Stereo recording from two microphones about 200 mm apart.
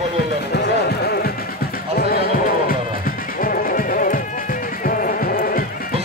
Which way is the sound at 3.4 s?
45° left (ahead or behind).